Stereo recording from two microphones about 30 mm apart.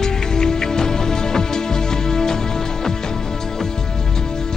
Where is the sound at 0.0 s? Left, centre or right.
Centre.